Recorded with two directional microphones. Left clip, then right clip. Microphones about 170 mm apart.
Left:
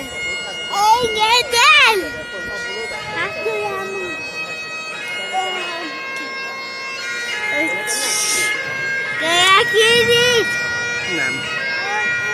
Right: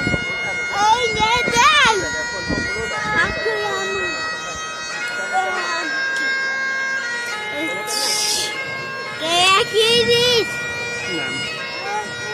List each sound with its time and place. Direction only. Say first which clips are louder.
1.2 s a sound: left 2 dB; 20° left (ahead or behind)
8.1 s air horn: left 2 dB; 20° left (ahead or behind)
9.3 s children playing: left 2 dB; 20° left (ahead or behind)